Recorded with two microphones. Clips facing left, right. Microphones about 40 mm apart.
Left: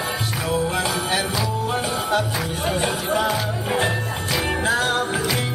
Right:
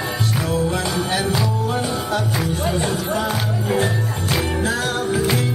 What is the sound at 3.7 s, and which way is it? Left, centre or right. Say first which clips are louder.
Jingle bell: right 1 dB; left.